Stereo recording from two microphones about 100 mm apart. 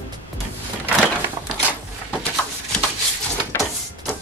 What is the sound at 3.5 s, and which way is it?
Printer, 25° left (ahead or behind).